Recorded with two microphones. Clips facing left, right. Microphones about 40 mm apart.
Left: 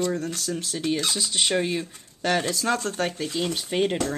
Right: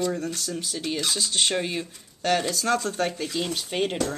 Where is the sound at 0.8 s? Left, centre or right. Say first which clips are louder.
Left 4 dB; left.